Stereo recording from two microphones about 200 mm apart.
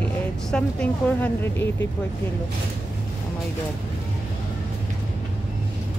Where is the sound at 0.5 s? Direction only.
5° left (ahead or behind).